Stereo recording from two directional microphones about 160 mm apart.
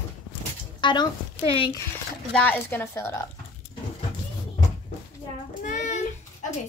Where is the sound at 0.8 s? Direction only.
25° left (ahead or behind).